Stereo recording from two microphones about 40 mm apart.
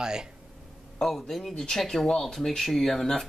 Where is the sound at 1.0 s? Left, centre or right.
Centre.